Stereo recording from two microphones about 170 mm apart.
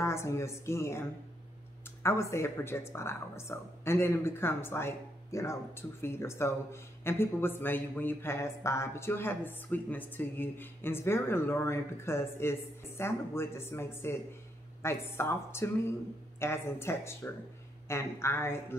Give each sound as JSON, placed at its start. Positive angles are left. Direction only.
{"t": 0.0, "sound": "speech", "side_deg": 15}
{"t": 2.0, "sound": "speech", "side_deg": 15}